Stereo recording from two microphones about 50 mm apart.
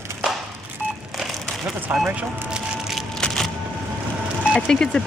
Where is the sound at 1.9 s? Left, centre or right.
Right.